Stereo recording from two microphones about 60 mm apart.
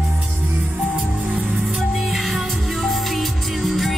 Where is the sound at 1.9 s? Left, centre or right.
Centre.